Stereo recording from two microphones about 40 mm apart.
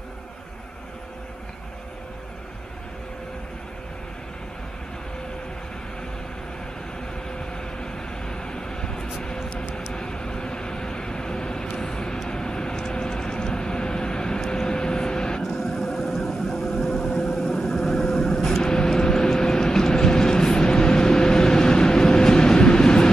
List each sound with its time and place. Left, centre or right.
7.2 s vehicle: centre
9.2 s music: centre
9.9 s vehicle: centre
15.4 s vehicle: centre